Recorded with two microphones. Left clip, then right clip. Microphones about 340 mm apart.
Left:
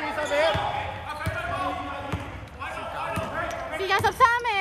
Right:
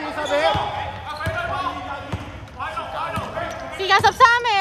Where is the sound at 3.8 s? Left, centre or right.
Right.